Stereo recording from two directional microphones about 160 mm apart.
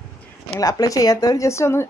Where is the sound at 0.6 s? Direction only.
20° left (ahead or behind).